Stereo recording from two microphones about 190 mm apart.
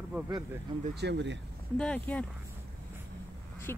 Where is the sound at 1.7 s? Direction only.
5° left (ahead or behind).